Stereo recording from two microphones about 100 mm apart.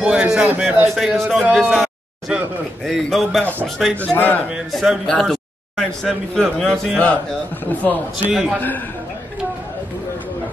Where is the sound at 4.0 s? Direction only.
15° left (ahead or behind).